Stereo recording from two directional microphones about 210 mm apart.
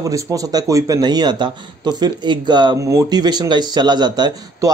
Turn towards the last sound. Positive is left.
turn(degrees=-20)  # may be behind; listen again after turning